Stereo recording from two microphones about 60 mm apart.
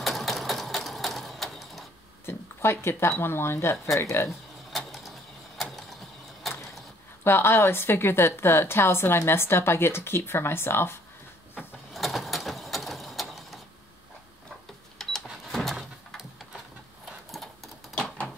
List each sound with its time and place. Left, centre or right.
0.0 s sewing machine: centre
2.2 s a woman's voice: left
4.3 s mechanisms: centre
7.2 s a woman's voice: left
11.9 s mechanisms: centre
15.0 s power windows: centre
15.5 s door: centre
17.9 s a sound: centre